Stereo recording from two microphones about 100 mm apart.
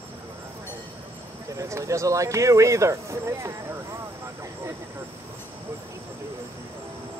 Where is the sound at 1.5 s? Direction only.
35° right (ahead or behind).